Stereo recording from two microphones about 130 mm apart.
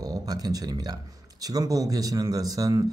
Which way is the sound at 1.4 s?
30° right (ahead or behind).